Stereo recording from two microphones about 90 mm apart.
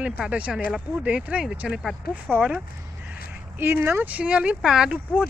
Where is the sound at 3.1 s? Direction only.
20° right (ahead or behind).